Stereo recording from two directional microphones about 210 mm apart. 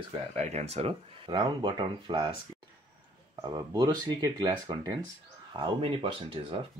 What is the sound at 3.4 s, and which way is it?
Speech, 20° right (ahead or behind).